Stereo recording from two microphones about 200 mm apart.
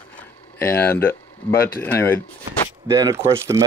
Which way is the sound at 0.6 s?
10° left (ahead or behind).